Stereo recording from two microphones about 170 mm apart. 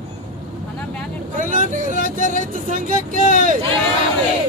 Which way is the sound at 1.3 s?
50° right (ahead or behind).